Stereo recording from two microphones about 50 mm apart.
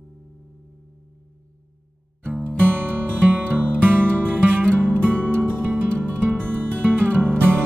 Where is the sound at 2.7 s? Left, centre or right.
Right.